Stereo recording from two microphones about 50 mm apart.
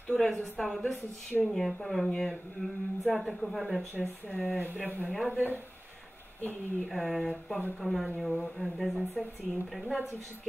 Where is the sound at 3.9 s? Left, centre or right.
Left.